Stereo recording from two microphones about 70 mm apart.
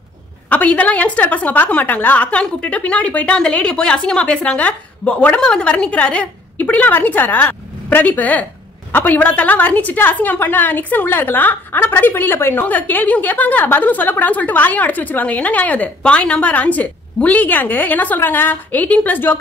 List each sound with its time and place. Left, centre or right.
0.5 s a woman's voice: left